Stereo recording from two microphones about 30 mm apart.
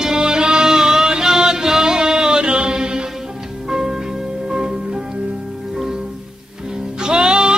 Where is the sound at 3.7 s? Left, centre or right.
Centre.